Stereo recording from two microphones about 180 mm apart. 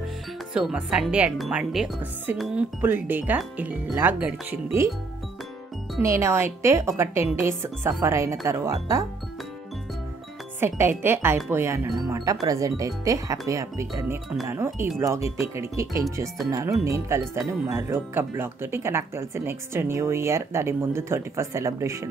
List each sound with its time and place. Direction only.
0.6 s speech: 5° right (ahead or behind)
6.0 s speech: 15° right (ahead or behind)
10.6 s speech: 10° right (ahead or behind)